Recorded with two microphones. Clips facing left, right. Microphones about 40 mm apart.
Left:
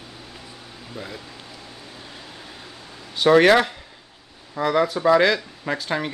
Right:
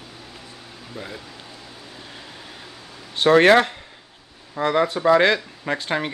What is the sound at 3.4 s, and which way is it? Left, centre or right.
Speech, right.